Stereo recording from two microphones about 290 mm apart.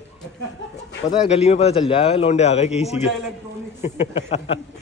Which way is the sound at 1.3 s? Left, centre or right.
Left.